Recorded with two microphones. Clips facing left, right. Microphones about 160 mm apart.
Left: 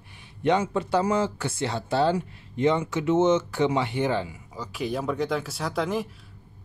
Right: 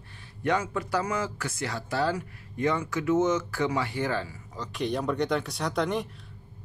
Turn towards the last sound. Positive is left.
turn(degrees=0)  # may be behind; listen again after turning